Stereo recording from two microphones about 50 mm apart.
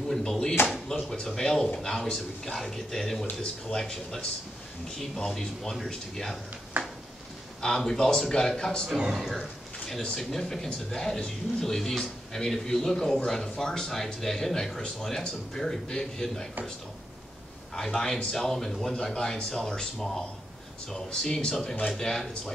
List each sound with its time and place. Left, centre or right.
0.1 s speech: centre
6.8 s a sound: right
7.6 s speech: centre
9.1 s speech: centre
10.1 s speech: centre
17.7 s speech: centre